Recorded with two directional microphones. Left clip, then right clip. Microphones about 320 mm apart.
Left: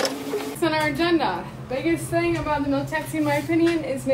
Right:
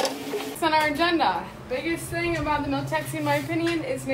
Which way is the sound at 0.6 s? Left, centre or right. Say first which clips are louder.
Right 1 dB; centre.